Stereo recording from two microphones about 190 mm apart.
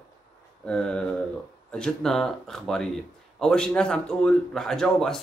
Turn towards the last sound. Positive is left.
turn(degrees=5)  # may be behind; listen again after turning